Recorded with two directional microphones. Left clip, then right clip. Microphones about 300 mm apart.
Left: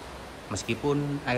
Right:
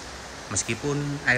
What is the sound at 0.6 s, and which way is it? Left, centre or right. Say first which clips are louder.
Speech: left 3 dB; centre.